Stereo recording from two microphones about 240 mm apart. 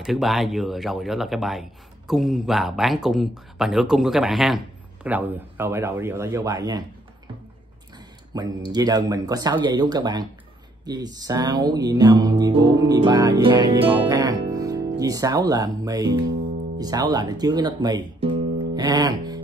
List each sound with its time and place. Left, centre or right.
0.0 s speech: centre
5.0 s music: centre
8.3 s music: centre